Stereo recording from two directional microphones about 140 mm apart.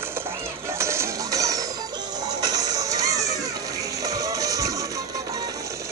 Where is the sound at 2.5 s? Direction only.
25° right (ahead or behind).